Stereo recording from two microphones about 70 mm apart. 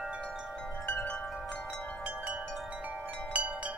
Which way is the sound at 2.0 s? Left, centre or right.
Centre.